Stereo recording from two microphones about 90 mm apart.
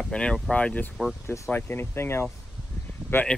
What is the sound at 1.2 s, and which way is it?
Speech, 35° left (ahead or behind).